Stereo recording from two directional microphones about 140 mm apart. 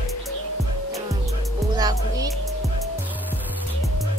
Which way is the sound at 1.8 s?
25° right (ahead or behind).